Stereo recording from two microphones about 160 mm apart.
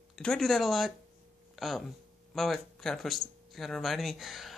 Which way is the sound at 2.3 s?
Centre (ahead or behind).